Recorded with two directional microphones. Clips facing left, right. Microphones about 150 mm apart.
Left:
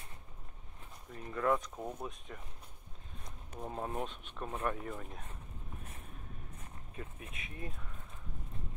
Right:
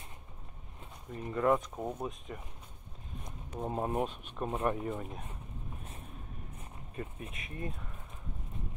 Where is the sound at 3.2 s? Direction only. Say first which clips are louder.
Right 6 dB; 20° right (ahead or behind).